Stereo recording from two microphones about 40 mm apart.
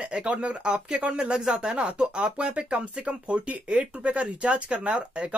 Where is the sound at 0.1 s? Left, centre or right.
Right.